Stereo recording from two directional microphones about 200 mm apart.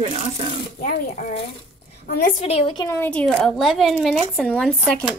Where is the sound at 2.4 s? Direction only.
30° left (ahead or behind).